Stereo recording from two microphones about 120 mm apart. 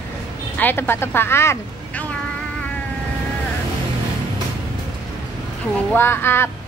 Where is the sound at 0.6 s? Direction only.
15° left (ahead or behind).